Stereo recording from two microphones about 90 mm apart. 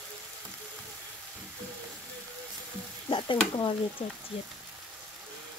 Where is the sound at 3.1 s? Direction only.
60° left (ahead or behind).